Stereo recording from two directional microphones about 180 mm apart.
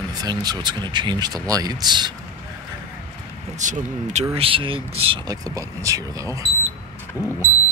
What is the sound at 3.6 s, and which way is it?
Speech, 45° right (ahead or behind).